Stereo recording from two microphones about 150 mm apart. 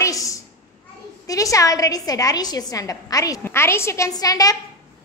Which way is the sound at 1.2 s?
20° left (ahead or behind).